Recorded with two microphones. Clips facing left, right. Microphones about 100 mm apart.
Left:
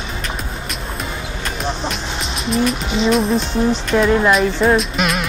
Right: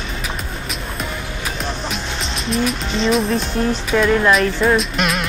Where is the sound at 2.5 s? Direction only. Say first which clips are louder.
Left 2 dB; 5° left (ahead or behind).